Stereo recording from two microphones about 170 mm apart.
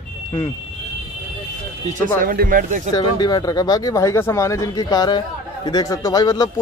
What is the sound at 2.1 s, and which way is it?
Speech, 55° right (ahead or behind).